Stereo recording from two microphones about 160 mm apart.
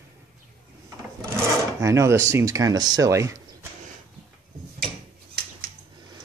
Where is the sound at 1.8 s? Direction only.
20° right (ahead or behind).